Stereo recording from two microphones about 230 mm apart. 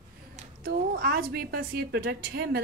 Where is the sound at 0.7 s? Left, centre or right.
Right.